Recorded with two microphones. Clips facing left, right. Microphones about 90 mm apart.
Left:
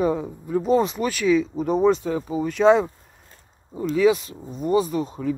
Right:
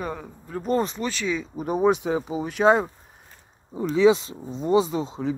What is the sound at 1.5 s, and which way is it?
Speech, 10° right (ahead or behind).